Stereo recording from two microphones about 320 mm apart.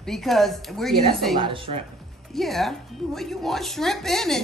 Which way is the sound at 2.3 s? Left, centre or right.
Centre.